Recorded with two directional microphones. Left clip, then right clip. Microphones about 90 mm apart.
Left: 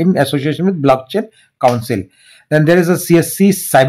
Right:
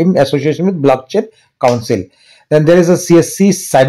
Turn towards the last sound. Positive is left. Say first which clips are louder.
# right 1 dB
turn(degrees=-20)  # may be behind; listen again after turning